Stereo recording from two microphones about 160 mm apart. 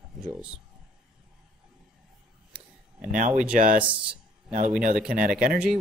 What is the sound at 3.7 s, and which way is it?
Speech, 10° right (ahead or behind).